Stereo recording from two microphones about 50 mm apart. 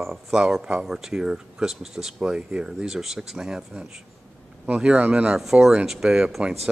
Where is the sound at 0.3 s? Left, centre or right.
Centre.